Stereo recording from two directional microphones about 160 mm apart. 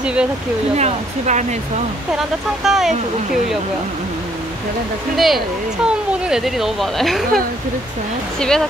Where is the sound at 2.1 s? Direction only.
Centre (ahead or behind).